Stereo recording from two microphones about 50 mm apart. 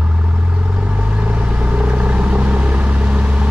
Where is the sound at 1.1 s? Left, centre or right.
Right.